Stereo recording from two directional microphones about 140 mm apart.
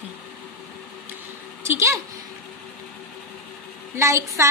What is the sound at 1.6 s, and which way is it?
Speech, 20° right (ahead or behind).